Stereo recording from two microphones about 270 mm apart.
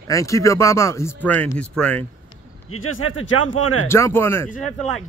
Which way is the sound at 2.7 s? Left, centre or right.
Left.